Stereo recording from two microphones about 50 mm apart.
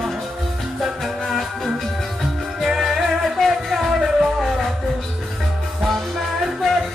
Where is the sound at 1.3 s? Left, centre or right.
Centre.